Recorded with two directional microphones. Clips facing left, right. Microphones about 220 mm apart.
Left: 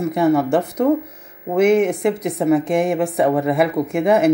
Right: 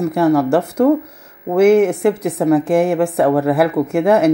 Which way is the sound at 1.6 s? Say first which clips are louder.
Right 4 dB; 5° right (ahead or behind).